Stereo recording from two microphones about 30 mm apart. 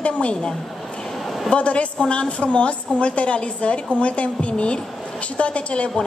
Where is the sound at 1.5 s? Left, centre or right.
Left.